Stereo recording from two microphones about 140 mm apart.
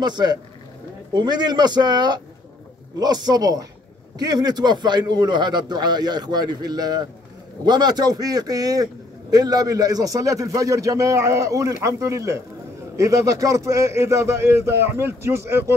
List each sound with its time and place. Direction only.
0.0 s a man's voice: 30° right (ahead or behind)